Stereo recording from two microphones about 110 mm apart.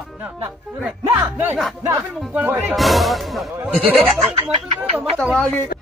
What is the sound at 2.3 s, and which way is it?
Speech, 15° right (ahead or behind).